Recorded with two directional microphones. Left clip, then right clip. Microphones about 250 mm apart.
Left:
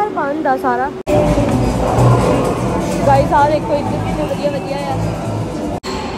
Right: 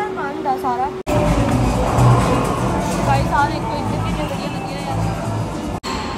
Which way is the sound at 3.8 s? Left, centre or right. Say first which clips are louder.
Left 4 dB; right.